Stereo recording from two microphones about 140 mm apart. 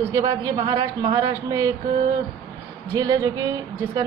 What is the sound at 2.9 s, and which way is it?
Speech, 30° right (ahead or behind).